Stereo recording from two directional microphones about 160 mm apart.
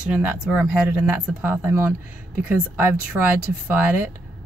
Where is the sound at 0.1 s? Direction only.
10° right (ahead or behind).